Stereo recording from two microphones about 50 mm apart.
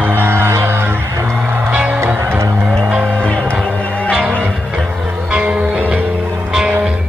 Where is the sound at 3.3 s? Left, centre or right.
Left.